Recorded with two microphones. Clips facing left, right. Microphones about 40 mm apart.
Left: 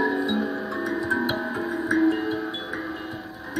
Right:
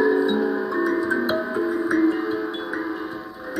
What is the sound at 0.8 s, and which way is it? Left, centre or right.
Music, centre.